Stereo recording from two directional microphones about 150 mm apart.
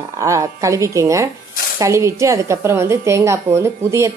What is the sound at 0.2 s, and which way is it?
A woman's voice, 20° right (ahead or behind).